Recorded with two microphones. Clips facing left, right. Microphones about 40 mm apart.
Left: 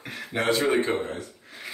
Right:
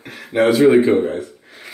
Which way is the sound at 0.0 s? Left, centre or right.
Centre.